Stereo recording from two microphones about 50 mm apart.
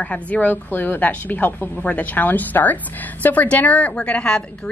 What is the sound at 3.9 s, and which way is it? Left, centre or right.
Speech, left.